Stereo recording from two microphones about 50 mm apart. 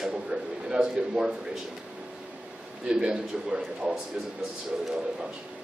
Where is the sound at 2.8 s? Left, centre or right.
Centre.